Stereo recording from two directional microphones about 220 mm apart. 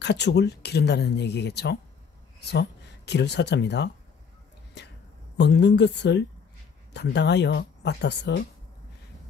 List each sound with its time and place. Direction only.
0.0 s speech: 50° left (ahead or behind)
3.1 s speech: 50° left (ahead or behind)
5.4 s speech: 50° left (ahead or behind)